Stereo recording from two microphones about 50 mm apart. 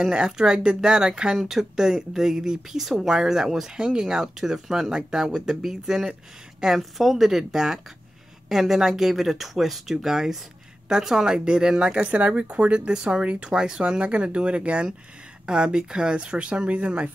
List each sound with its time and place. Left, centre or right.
0.0 s speech: centre
1.3 s speech: centre; by 17.1 s right